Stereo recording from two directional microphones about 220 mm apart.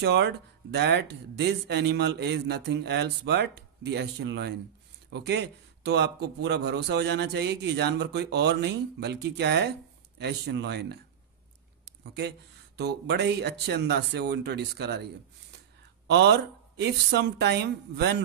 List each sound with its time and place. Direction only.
0.0 s a man's voice: 50° right (ahead or behind)
12.0 s a man's voice: 50° right (ahead or behind)